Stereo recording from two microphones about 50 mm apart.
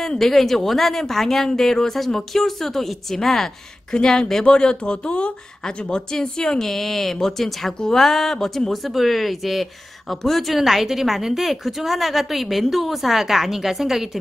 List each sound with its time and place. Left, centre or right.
0.2 s speech: centre